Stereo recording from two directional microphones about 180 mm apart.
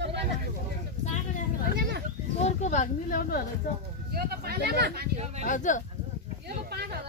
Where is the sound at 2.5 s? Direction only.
40° left (ahead or behind).